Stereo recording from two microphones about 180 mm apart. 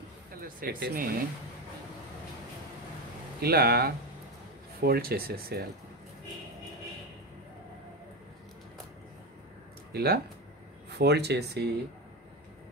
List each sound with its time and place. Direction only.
0.4 s speech: 55° right (ahead or behind)
3.3 s speech: 60° right (ahead or behind)
9.9 s speech: 60° right (ahead or behind)